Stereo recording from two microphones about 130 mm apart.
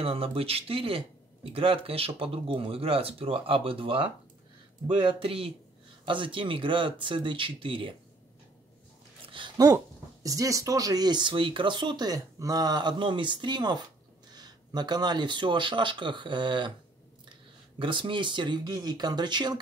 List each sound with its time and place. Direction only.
0.0 s speech: 45° right (ahead or behind)
9.4 s a sound: 40° right (ahead or behind)
10.2 s speech: 25° right (ahead or behind)
17.7 s speech: 40° right (ahead or behind)